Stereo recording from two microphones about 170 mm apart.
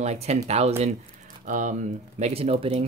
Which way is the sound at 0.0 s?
40° right (ahead or behind).